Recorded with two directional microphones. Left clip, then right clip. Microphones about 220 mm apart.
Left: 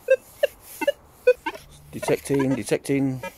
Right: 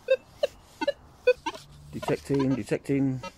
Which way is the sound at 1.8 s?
15° left (ahead or behind).